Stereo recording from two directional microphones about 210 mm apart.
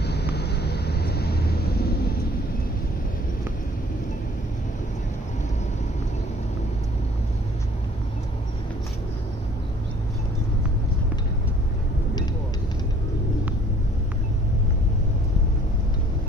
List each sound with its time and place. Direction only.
0.0 s vehicle: 50° left (ahead or behind)